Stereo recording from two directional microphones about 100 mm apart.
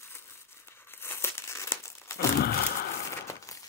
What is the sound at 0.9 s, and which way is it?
Crumpling, 25° left (ahead or behind).